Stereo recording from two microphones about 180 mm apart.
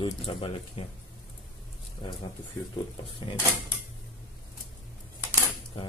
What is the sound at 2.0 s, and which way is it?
Speech, 25° left (ahead or behind).